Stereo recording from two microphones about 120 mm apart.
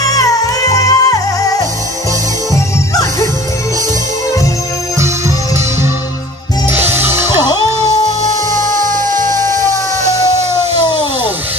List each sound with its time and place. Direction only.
0.0 s music: 30° left (ahead or behind)
6.7 s music: 15° right (ahead or behind)
8.5 s music: 90° right